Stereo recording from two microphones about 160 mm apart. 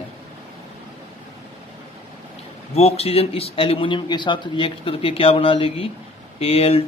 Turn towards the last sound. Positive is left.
turn(degrees=40)  # may be behind; listen again after turning